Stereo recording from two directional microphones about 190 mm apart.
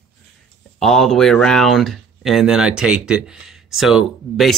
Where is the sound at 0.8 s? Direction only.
Centre (ahead or behind).